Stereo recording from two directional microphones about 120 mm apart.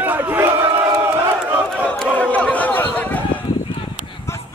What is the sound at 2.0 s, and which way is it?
Chatter, 10° left (ahead or behind).